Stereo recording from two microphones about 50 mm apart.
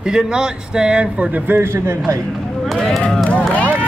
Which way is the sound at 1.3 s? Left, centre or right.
Right.